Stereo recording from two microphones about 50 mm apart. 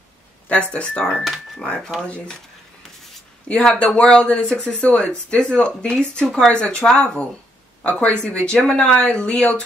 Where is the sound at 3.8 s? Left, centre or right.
Left.